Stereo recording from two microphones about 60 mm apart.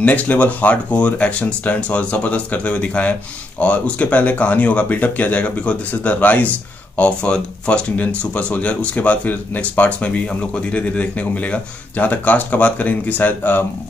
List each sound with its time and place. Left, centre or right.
0.0 s speech: left